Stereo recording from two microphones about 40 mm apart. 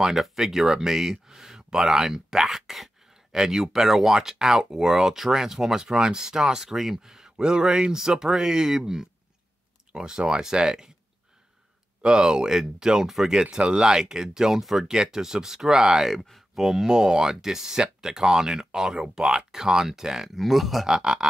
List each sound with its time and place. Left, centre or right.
0.2 s speech: centre
12.0 s speech: centre
13.4 s speech: centre
14.9 s speech: centre
16.1 s speech: centre
16.5 s speech: centre
20.3 s speech: centre